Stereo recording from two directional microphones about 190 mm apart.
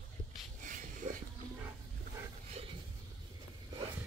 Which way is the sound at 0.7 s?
45° right (ahead or behind).